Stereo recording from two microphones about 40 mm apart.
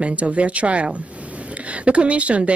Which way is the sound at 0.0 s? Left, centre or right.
Right.